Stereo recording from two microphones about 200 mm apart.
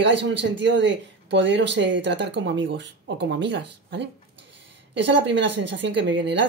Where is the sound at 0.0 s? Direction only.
60° right (ahead or behind).